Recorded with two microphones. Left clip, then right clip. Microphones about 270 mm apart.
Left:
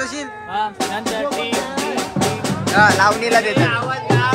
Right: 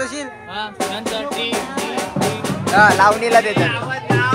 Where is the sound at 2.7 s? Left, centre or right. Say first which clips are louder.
Right 2 dB; centre.